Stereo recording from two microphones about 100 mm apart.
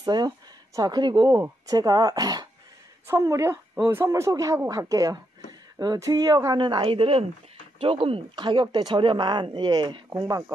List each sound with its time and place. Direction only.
0.0 s speech: 45° right (ahead or behind)
1.7 s a woman's voice: 40° right (ahead or behind)
10.0 s speech: 30° right (ahead or behind)